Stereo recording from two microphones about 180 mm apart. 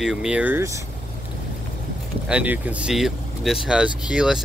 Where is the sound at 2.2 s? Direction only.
10° right (ahead or behind).